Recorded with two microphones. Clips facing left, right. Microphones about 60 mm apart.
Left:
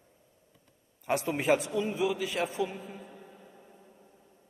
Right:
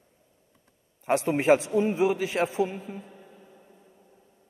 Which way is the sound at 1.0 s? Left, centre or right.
Right.